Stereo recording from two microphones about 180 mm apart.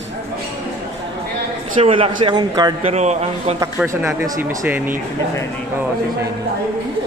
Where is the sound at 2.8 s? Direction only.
40° right (ahead or behind).